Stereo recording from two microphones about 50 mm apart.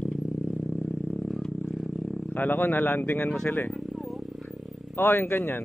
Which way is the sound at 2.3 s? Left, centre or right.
Left.